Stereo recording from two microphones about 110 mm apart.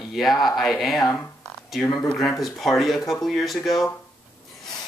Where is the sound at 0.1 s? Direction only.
Centre (ahead or behind).